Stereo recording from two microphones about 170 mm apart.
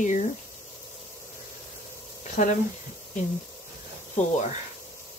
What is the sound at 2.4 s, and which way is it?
Speech, 50° left (ahead or behind).